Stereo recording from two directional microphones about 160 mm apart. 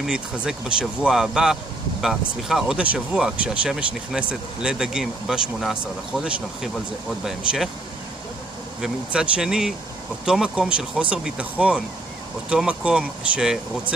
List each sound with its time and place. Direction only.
0.0 s speech: 5° right (ahead or behind)
7.2 s speech: centre (ahead or behind)
8.8 s speech: 5° right (ahead or behind)